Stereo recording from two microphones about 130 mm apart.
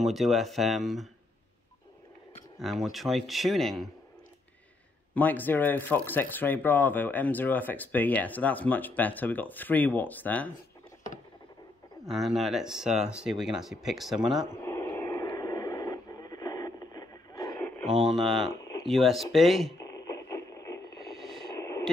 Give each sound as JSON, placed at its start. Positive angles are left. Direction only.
{"t": 0.0, "sound": "speech", "side_deg": 0}
{"t": 2.6, "sound": "speech", "side_deg": 0}
{"t": 5.1, "sound": "speech", "side_deg": 15}
{"t": 12.1, "sound": "speech", "side_deg": 0}
{"t": 14.5, "sound": "radio", "side_deg": 20}
{"t": 17.8, "sound": "speech", "side_deg": -5}
{"t": 20.3, "sound": "radio", "side_deg": 25}
{"t": 21.2, "sound": "a sound", "side_deg": 5}